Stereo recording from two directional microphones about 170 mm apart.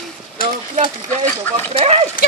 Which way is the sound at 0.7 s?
45° right (ahead or behind).